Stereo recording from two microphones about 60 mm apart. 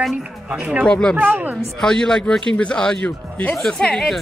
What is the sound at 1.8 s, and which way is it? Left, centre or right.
A woman's voice, centre.